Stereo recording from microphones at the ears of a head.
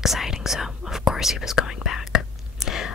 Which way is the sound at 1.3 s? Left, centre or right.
Left.